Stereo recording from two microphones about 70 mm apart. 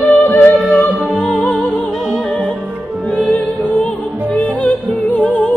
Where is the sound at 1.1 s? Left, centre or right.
Centre.